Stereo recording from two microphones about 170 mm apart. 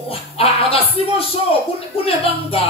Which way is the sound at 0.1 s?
35° left (ahead or behind).